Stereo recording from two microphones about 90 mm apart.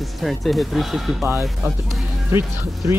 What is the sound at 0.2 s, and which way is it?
Speech, centre (ahead or behind).